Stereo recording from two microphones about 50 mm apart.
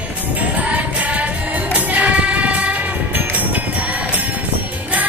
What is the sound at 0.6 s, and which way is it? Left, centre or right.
Music, right.